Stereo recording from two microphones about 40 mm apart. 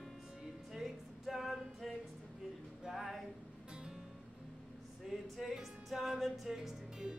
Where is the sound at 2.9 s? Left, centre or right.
Centre.